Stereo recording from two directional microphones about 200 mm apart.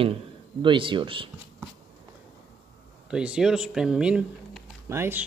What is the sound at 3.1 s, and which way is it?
Speech, 5° right (ahead or behind).